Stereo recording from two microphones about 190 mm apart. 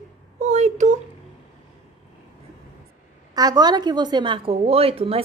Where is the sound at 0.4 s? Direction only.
35° right (ahead or behind).